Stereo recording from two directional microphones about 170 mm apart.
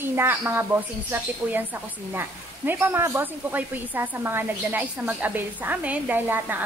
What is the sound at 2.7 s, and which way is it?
Speech, 15° right (ahead or behind).